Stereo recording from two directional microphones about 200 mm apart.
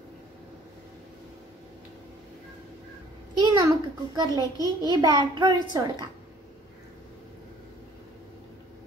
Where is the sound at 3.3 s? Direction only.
20° right (ahead or behind).